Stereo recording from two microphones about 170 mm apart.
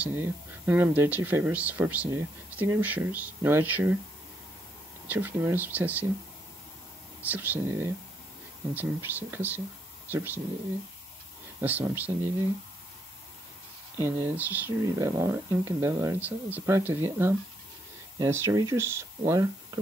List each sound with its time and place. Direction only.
0.0 s speech: 10° right (ahead or behind)
5.0 s speech: 10° right (ahead or behind)
7.2 s speech: 10° right (ahead or behind)
11.6 s speech: 10° right (ahead or behind)
13.9 s speech: 15° right (ahead or behind)